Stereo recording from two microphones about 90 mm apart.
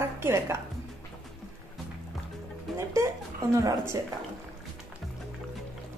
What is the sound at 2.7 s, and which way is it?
Speech, 5° left (ahead or behind).